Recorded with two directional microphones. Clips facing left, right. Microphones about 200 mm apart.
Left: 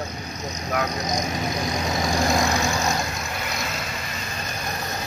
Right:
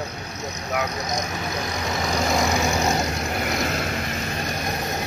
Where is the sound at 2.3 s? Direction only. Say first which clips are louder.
Even; 5° right (ahead or behind).